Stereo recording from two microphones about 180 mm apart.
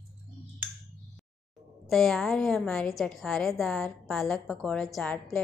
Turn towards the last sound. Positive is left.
turn(degrees=5)  # may be behind; listen again after turning